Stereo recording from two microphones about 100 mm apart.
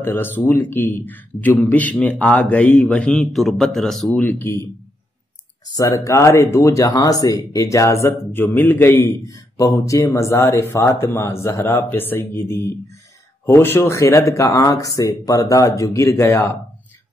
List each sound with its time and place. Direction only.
0.0 s a man's voice: 20° left (ahead or behind); by 4.2 s centre (ahead or behind)
4.2 s a man's voice: 20° left (ahead or behind)
5.8 s a man's voice: 35° left (ahead or behind)
9.2 s a man's voice: 35° left (ahead or behind)